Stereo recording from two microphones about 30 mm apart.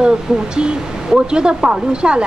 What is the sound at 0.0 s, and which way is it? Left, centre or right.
Speech, right.